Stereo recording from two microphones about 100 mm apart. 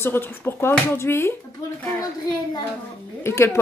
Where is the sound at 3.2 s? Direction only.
30° left (ahead or behind).